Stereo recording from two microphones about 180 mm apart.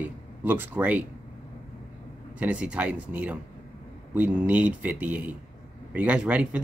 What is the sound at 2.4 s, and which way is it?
Speech, 10° right (ahead or behind).